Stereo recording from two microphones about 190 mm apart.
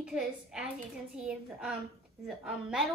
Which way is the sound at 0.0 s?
5° right (ahead or behind).